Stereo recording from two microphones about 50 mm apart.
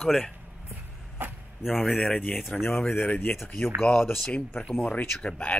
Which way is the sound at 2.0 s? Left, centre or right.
Left.